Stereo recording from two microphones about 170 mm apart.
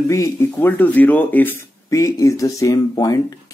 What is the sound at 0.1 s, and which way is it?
Speech, 15° left (ahead or behind).